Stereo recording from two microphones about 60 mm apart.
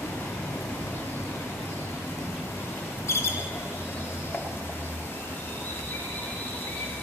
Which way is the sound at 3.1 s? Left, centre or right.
Left.